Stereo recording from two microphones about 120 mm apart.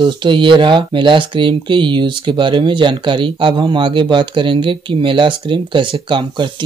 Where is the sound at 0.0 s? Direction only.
40° right (ahead or behind).